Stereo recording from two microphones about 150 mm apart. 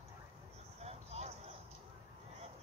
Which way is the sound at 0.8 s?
45° right (ahead or behind).